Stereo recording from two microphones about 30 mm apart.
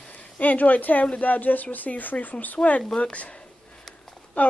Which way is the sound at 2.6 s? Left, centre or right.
Left.